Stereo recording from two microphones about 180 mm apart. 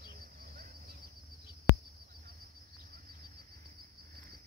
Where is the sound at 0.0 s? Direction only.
55° right (ahead or behind).